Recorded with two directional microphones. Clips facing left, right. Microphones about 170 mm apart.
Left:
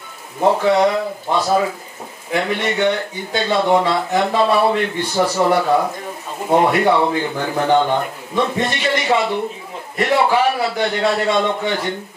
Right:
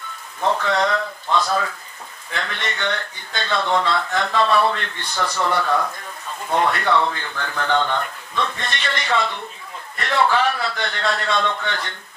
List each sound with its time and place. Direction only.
0.5 s a man's voice: 15° left (ahead or behind)
5.1 s speech: 30° left (ahead or behind)
5.4 s a man's voice: 10° left (ahead or behind)